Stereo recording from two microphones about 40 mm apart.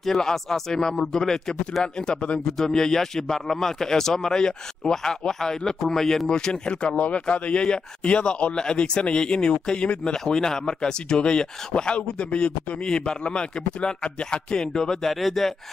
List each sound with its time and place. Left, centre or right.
0.0 s a man's voice: centre
2.0 s a man's voice: left
10.1 s speech: centre
15.1 s speech: centre